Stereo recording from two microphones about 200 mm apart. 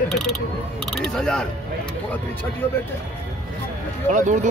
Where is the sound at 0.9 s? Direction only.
5° left (ahead or behind).